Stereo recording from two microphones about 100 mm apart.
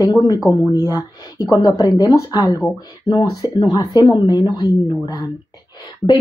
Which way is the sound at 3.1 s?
50° left (ahead or behind).